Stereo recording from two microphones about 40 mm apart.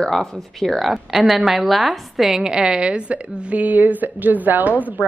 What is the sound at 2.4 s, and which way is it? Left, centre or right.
A woman's voice, centre.